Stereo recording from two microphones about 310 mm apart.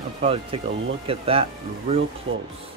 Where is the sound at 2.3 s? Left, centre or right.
Right.